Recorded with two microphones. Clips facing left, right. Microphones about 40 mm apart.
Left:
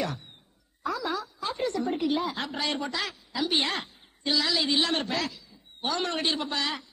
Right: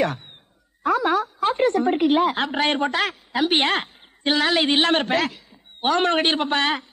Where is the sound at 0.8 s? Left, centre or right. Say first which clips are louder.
Right 10 dB; right.